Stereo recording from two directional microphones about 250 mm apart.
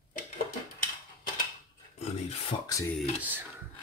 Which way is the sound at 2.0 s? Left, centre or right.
Left.